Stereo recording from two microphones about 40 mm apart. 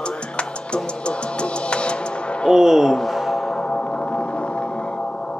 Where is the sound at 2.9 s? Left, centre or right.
Centre.